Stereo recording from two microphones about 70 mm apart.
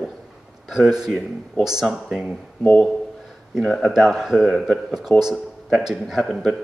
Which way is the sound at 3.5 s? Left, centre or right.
Centre.